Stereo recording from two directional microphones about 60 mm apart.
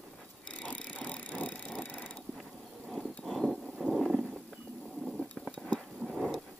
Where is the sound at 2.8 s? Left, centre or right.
Centre.